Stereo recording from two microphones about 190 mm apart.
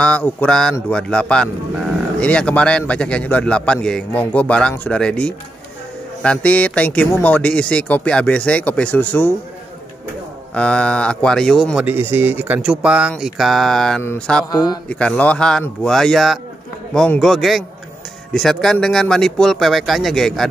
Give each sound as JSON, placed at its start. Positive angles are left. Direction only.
{"t": 0.0, "sound": "a man's voice", "side_deg": 10}
{"t": 10.5, "sound": "a man's voice", "side_deg": 5}
{"t": 11.8, "sound": "a man's voice", "side_deg": -10}
{"t": 14.5, "sound": "speech", "side_deg": 20}
{"t": 14.9, "sound": "a man's voice", "side_deg": 5}